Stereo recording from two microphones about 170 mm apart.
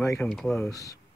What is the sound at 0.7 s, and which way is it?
Speech, 20° left (ahead or behind).